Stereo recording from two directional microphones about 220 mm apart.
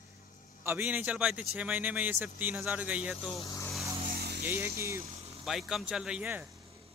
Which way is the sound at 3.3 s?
15° left (ahead or behind).